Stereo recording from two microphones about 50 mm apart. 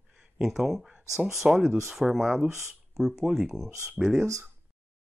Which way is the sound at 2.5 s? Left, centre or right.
Right.